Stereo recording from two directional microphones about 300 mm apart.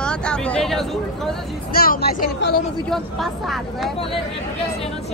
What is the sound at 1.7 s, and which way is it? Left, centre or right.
Speech, left.